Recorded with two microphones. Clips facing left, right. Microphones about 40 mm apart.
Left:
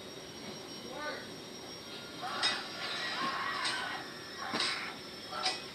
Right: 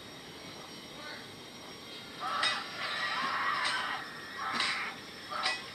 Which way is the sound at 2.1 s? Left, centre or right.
Centre.